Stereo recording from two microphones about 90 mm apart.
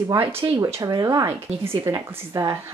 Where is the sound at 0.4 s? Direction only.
60° right (ahead or behind).